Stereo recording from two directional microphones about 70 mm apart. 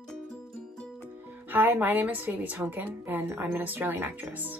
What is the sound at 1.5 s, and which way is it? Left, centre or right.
Speech, right.